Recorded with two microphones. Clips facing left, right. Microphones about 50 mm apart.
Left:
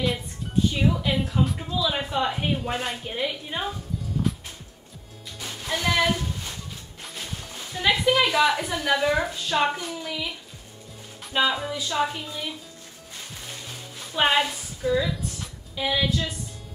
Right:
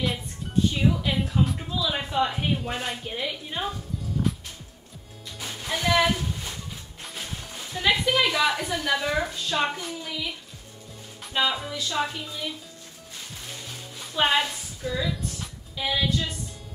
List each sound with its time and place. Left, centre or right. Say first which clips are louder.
0.7 s a woman's voice: left 1 dB; centre
5.4 s speech: left 1 dB; centre
11.3 s a woman's voice: left 2 dB; centre
13.5 s music: even; centre